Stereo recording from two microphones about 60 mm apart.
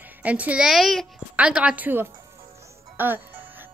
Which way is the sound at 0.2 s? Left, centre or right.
Right.